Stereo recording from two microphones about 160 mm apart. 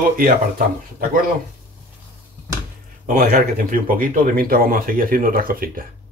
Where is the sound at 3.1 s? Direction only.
60° right (ahead or behind).